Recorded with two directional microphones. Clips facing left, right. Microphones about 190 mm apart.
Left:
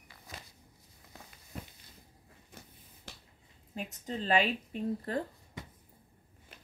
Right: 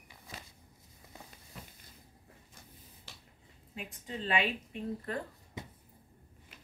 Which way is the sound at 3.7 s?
40° left (ahead or behind).